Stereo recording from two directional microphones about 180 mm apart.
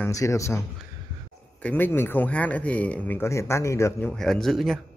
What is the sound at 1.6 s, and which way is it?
Speech, 10° left (ahead or behind).